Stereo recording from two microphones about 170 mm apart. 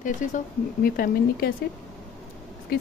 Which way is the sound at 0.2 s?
50° left (ahead or behind).